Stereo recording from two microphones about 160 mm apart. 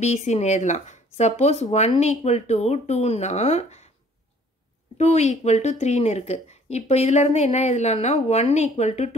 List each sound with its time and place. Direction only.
0.0 s a woman's voice: 45° left (ahead or behind)
4.9 s a woman's voice: 45° left (ahead or behind)